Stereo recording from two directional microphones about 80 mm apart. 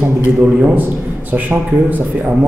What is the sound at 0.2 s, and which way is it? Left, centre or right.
A man's voice, centre.